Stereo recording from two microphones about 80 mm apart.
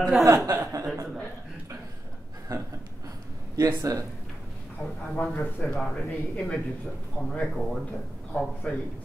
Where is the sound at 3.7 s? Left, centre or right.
Right.